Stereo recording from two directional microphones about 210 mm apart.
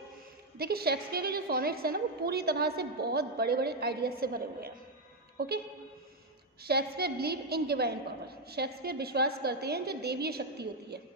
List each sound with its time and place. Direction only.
0.6 s a woman's voice: 45° right (ahead or behind)
6.7 s a woman's voice: 50° right (ahead or behind)